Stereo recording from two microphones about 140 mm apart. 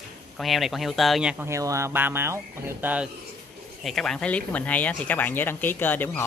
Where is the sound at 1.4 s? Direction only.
20° right (ahead or behind).